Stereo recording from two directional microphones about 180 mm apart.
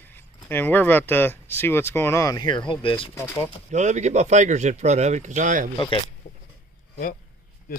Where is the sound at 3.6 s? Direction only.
40° right (ahead or behind).